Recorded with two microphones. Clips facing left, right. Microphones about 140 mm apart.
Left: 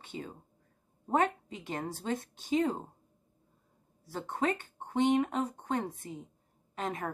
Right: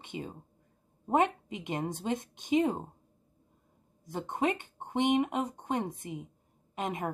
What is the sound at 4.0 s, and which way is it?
A woman's voice, 20° right (ahead or behind).